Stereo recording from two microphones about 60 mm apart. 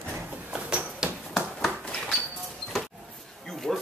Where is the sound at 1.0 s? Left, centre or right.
Centre.